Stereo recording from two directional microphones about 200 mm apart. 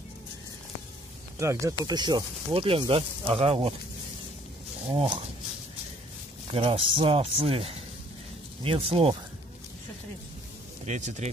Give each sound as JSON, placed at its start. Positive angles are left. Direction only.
{"t": 1.4, "sound": "speech", "side_deg": -15}
{"t": 4.8, "sound": "speech", "side_deg": -25}
{"t": 6.5, "sound": "speech", "side_deg": -25}
{"t": 10.9, "sound": "speech", "side_deg": -35}